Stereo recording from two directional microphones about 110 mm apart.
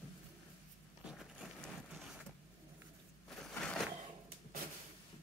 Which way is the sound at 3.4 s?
10° left (ahead or behind).